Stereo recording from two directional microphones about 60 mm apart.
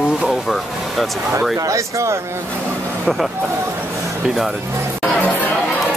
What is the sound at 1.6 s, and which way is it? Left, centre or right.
Speech, right.